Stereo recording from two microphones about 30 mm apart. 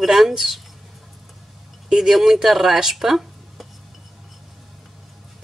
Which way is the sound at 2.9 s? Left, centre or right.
Centre.